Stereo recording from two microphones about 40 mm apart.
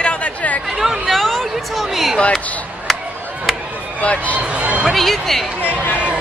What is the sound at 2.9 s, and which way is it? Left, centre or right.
Chop, centre.